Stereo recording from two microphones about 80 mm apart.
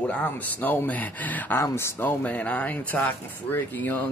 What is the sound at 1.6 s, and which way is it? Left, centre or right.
Speech, left.